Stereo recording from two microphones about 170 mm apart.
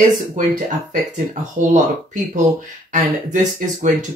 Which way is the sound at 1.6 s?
45° right (ahead or behind).